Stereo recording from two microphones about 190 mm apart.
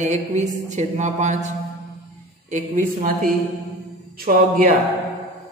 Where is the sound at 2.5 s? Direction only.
45° right (ahead or behind).